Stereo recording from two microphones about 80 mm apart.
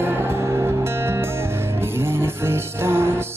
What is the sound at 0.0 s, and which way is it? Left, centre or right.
Music, right.